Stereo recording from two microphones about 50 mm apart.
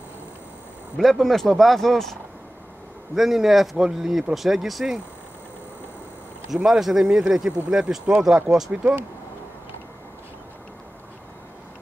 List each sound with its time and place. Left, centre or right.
0.9 s speech: centre
3.2 s speech: centre
6.5 s speech: centre